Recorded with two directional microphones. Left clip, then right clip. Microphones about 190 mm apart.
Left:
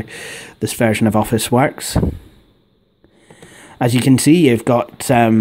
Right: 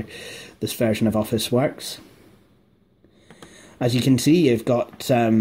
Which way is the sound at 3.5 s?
30° left (ahead or behind).